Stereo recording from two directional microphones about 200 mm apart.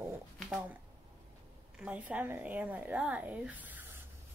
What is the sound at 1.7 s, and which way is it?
A woman's voice, 5° right (ahead or behind).